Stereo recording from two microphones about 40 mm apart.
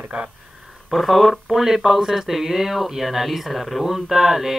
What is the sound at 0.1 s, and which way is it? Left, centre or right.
Speech, right.